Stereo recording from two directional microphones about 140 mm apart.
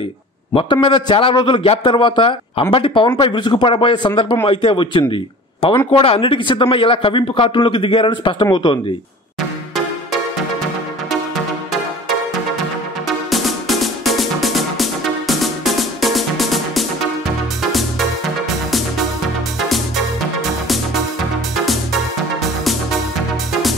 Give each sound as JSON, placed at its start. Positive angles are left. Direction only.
{"t": 0.6, "sound": "speech", "side_deg": 35}
{"t": 13.3, "sound": "music", "side_deg": 0}